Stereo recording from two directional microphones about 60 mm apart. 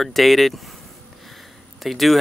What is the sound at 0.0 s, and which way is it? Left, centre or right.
Speech, centre.